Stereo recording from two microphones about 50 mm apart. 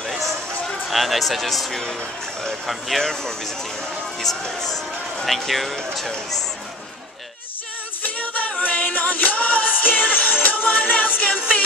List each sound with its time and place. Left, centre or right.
0.0 s run: centre
0.8 s speech: centre
8.0 s music: left